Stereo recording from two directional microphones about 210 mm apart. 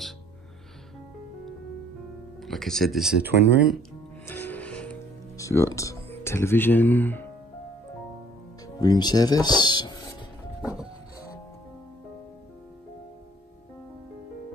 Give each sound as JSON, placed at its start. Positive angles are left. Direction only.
{"t": 2.4, "sound": "speech", "side_deg": 0}
{"t": 4.3, "sound": "music", "side_deg": 10}
{"t": 5.4, "sound": "speech", "side_deg": 15}
{"t": 8.7, "sound": "speech", "side_deg": 20}
{"t": 10.6, "sound": "music", "side_deg": -5}